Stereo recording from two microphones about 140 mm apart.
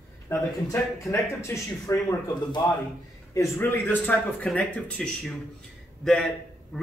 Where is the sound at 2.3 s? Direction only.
30° left (ahead or behind).